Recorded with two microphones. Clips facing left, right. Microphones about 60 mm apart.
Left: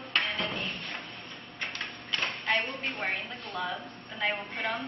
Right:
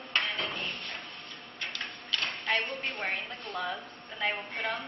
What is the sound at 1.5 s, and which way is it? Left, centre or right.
Tick-tock, left.